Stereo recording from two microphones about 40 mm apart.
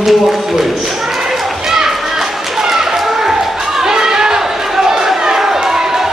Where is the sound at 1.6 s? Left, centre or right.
Centre.